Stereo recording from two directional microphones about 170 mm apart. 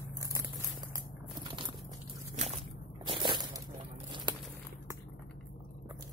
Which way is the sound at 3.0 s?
30° right (ahead or behind).